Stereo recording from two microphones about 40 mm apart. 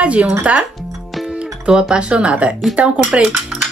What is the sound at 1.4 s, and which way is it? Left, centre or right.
Speech, centre.